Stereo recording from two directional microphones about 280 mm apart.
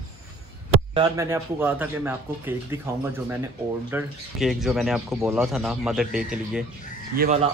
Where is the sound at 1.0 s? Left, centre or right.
Centre.